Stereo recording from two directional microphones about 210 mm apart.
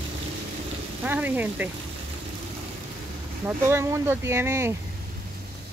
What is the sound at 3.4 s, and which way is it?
Speech, 10° right (ahead or behind).